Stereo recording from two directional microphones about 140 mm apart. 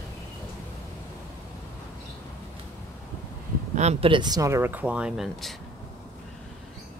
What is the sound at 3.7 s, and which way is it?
Speech, 55° right (ahead or behind).